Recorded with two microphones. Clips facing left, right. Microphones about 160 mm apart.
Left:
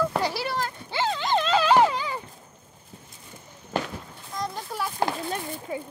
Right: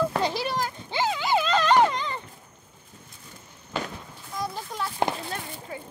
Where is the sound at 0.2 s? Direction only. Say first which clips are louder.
Right 1 dB; 20° right (ahead or behind).